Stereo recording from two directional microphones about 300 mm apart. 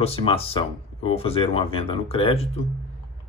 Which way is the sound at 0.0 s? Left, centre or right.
Centre.